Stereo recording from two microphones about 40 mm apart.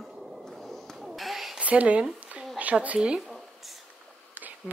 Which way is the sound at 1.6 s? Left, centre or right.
Right.